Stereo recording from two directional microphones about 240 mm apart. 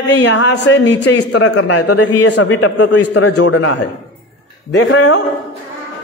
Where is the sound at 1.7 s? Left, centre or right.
Left.